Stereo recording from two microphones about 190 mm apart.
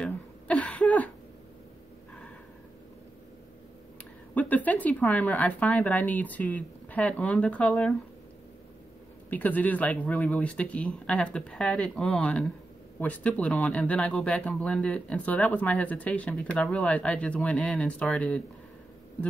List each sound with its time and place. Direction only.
0.0 s throat clearing: 5° left (ahead or behind)
4.4 s speech: 10° left (ahead or behind)
9.3 s speech: 10° left (ahead or behind)